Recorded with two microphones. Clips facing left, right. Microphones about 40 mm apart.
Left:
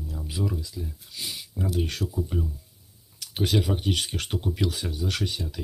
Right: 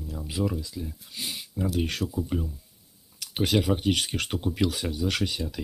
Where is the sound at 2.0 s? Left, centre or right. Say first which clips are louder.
Right 1 dB; right.